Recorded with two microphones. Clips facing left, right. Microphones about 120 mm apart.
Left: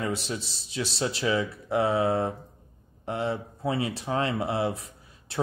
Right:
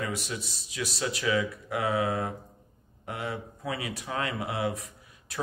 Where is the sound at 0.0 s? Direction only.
30° left (ahead or behind).